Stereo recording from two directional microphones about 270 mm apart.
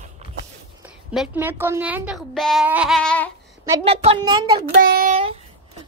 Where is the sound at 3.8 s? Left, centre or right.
Right.